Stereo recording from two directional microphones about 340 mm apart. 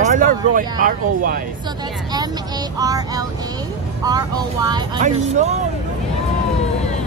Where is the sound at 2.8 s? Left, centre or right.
Centre.